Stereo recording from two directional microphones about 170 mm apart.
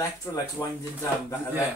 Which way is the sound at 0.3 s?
15° left (ahead or behind).